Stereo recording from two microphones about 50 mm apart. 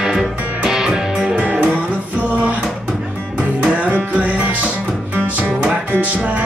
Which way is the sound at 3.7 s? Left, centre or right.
Right.